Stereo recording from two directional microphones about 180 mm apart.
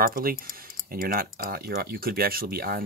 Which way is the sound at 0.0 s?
55° right (ahead or behind).